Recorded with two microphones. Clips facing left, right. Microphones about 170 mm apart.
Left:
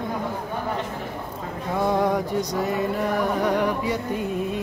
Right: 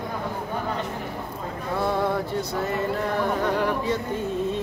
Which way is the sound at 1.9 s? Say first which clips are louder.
Left 3 dB; 15° left (ahead or behind).